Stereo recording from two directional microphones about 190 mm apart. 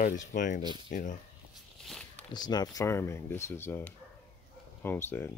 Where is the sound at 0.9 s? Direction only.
45° left (ahead or behind).